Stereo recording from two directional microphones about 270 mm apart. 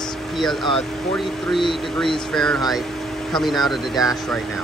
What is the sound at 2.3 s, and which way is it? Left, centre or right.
Speech, centre.